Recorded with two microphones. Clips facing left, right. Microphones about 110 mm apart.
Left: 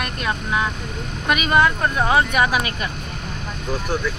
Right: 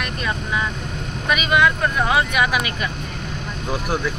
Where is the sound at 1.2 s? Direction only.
40° left (ahead or behind).